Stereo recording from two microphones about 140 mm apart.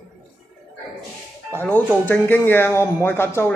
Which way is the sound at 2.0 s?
15° left (ahead or behind).